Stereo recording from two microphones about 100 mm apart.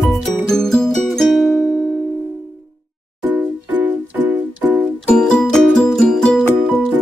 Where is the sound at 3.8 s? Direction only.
20° right (ahead or behind).